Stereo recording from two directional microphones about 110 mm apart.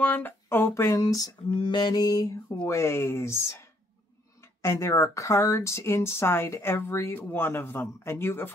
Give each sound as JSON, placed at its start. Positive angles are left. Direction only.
{"t": 0.0, "sound": "speech", "side_deg": 15}
{"t": 1.5, "sound": "mantra", "side_deg": 45}
{"t": 2.7, "sound": "speech", "side_deg": 25}
{"t": 4.6, "sound": "speech", "side_deg": 25}